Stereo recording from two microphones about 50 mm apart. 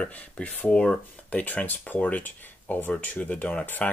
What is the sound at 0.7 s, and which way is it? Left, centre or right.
Speech, centre.